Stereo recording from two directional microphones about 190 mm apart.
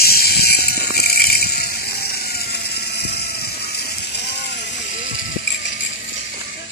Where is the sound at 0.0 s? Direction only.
55° left (ahead or behind).